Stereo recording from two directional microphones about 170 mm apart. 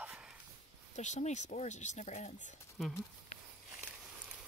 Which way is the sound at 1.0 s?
45° left (ahead or behind).